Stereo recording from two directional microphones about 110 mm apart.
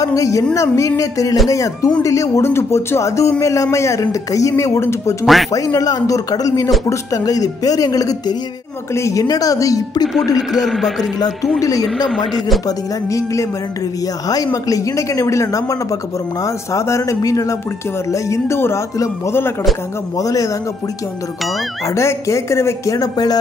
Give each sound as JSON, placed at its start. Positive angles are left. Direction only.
{"t": 0.0, "sound": "speech", "side_deg": 30}
{"t": 5.2, "sound": "a man's voice", "side_deg": 0}
{"t": 5.5, "sound": "speech", "side_deg": 30}
{"t": 10.5, "sound": "a man's voice", "side_deg": 0}
{"t": 11.6, "sound": "speech", "side_deg": 35}
{"t": 21.8, "sound": "speech", "side_deg": 25}